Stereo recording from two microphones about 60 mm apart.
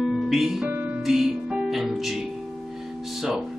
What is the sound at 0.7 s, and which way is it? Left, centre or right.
Music, right.